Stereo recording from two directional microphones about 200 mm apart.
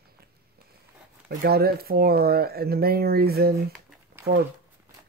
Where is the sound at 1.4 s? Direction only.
50° right (ahead or behind).